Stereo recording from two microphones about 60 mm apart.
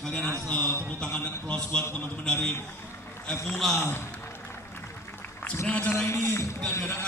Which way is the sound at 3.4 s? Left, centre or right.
Centre.